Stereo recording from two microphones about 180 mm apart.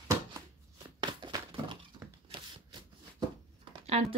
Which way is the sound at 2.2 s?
30° right (ahead or behind).